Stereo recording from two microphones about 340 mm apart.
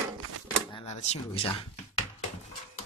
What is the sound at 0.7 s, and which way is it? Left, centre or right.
Speech, centre.